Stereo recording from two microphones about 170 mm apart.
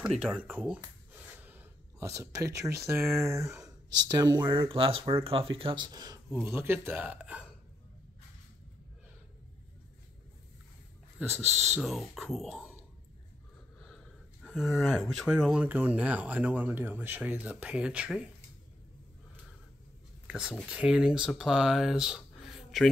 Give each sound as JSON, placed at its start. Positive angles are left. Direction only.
{"t": 0.0, "sound": "speech", "side_deg": -5}
{"t": 6.4, "sound": "speech", "side_deg": -10}
{"t": 11.5, "sound": "speech", "side_deg": 0}
{"t": 13.7, "sound": "a sound", "side_deg": 0}
{"t": 15.1, "sound": "speech", "side_deg": -5}
{"t": 20.2, "sound": "speech", "side_deg": -5}